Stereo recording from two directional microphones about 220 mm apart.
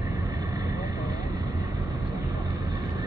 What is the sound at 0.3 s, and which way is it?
Vehicle, 15° right (ahead or behind).